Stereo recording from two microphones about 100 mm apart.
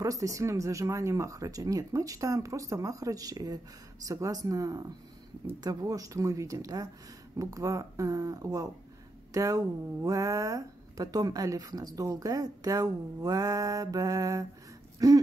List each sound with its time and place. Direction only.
0.0 s speech: 35° right (ahead or behind)